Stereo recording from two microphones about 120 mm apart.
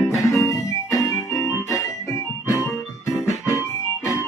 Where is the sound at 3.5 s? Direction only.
25° left (ahead or behind).